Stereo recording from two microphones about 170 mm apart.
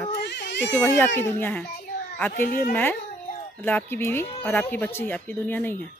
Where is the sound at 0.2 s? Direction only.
85° left.